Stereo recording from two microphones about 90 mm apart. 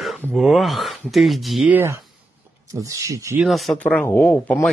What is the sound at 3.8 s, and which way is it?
Speech, 15° left (ahead or behind).